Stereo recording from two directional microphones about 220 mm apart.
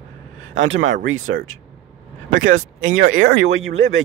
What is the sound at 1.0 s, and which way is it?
Speech, 65° right (ahead or behind).